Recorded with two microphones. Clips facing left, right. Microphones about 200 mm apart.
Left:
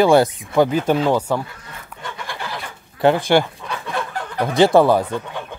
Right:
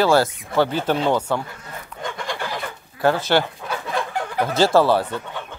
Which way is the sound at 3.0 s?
15° left (ahead or behind).